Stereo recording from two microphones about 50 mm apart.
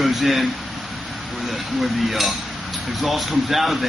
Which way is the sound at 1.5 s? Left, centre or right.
Centre.